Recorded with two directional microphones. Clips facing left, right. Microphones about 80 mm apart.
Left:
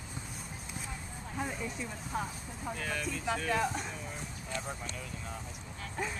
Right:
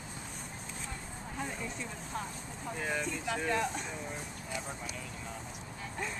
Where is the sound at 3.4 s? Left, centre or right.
Centre.